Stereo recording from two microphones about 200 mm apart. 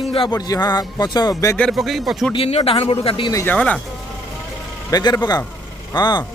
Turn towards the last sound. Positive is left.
turn(degrees=20)  # may be behind; listen again after turning